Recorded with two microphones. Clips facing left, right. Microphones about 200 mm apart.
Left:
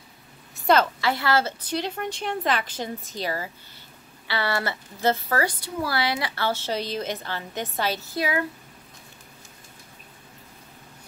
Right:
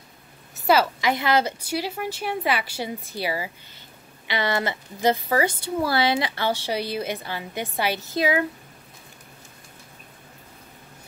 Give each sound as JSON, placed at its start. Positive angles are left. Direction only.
{"t": 0.7, "sound": "a woman's voice", "side_deg": -10}